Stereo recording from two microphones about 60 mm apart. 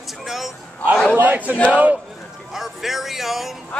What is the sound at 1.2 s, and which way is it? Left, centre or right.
Speech, right.